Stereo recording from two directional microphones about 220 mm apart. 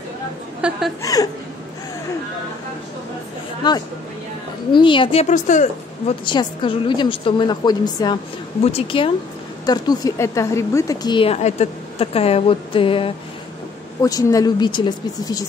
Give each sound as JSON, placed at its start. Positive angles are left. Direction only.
{"t": 0.6, "sound": "speech", "side_deg": -5}
{"t": 1.0, "sound": "speech", "side_deg": 15}
{"t": 3.6, "sound": "a woman's voice", "side_deg": 20}
{"t": 6.2, "sound": "a woman's voice", "side_deg": 20}